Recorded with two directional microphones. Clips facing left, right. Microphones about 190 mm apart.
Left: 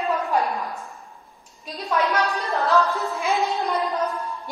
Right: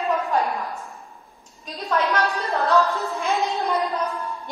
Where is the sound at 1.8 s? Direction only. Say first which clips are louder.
Even; centre (ahead or behind).